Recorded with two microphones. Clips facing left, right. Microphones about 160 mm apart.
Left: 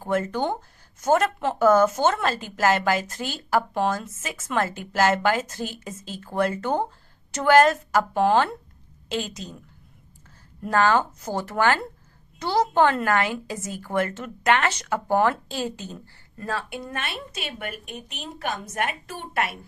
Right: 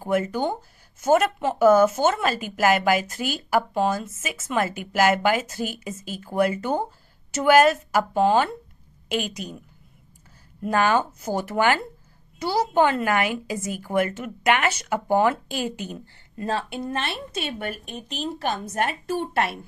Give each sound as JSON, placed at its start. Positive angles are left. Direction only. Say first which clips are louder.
{"t": 0.0, "sound": "speech", "louder": "right 1 dB", "side_deg": -10}
{"t": 10.7, "sound": "a woman's voice", "louder": "even", "side_deg": -15}